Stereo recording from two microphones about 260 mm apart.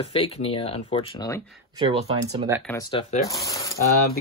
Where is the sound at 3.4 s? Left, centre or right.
Centre.